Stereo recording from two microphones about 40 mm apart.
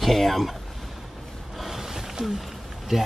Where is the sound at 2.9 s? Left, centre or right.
Centre.